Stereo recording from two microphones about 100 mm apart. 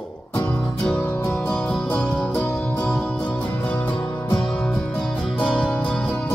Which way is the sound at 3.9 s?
50° left (ahead or behind).